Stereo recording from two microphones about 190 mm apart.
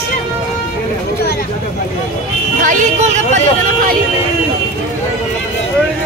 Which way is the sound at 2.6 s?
40° right (ahead or behind).